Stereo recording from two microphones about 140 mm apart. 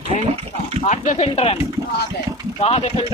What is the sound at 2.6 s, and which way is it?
Speech, 45° left (ahead or behind).